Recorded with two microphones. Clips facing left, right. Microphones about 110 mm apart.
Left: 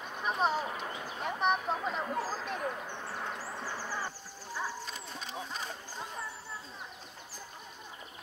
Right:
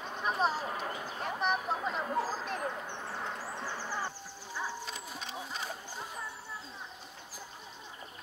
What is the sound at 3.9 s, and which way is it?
Music, 15° right (ahead or behind).